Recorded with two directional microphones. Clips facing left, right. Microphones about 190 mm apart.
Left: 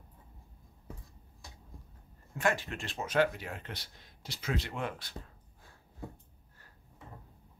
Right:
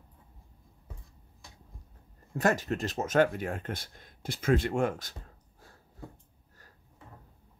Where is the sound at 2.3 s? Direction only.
40° right (ahead or behind).